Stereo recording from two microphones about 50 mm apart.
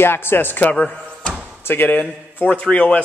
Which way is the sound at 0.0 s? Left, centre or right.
Left.